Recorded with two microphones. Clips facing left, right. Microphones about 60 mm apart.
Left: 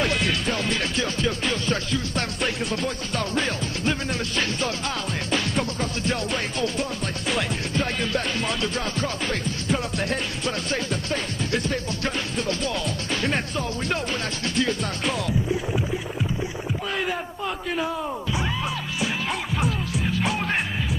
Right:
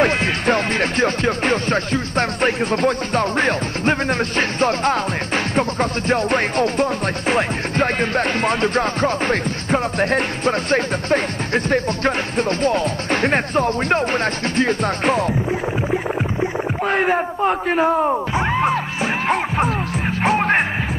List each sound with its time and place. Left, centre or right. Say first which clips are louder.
0.0 s music: right 7 dB; right
0.5 s music: right 7 dB; right
16.9 s music: right 11 dB; right
20.2 s music: right 10 dB; right